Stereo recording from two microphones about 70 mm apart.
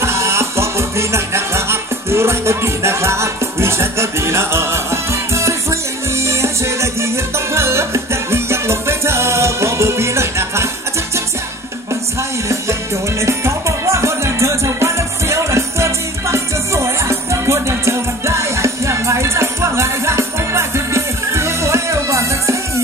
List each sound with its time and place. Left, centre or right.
0.0 s music: right
11.9 s music: right